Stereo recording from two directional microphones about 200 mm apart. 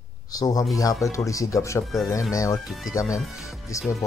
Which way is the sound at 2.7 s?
Centre (ahead or behind).